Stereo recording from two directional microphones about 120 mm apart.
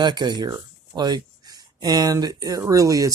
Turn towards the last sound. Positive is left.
turn(degrees=-30)  # may be behind; listen again after turning